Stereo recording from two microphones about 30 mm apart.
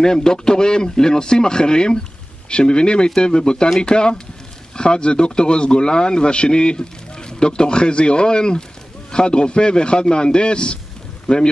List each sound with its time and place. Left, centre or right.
0.0 s a man's voice: left